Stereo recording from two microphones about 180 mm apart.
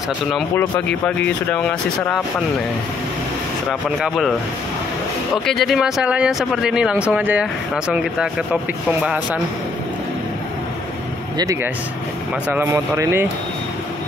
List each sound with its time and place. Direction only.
1.0 s speech: 10° left (ahead or behind)
4.0 s speech: centre (ahead or behind)
11.3 s speech: 20° right (ahead or behind)